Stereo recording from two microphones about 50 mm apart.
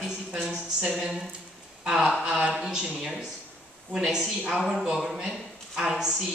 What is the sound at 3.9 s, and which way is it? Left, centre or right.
A man's voice, centre.